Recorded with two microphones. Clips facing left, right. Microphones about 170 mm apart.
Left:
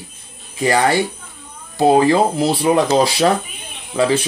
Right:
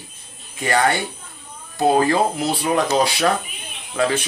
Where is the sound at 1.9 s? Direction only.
30° left (ahead or behind).